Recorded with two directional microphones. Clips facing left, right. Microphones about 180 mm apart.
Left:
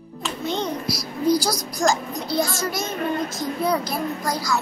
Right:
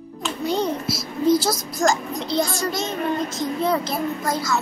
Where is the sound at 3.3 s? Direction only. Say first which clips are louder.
Right 1 dB; centre (ahead or behind).